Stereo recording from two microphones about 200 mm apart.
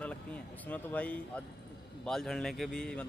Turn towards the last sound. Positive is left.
turn(degrees=5)  # may be behind; listen again after turning